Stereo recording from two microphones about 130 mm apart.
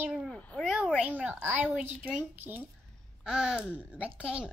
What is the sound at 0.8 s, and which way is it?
Speech, 10° right (ahead or behind).